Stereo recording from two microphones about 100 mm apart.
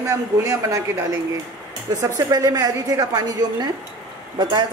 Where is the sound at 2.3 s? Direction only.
40° right (ahead or behind).